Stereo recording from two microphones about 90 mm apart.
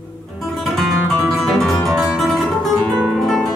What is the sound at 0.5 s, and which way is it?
Guitar, centre (ahead or behind).